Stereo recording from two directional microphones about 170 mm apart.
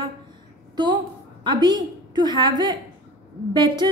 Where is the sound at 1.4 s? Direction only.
25° right (ahead or behind).